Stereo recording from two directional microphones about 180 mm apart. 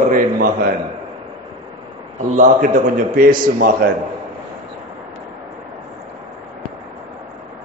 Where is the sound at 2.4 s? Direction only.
45° right (ahead or behind).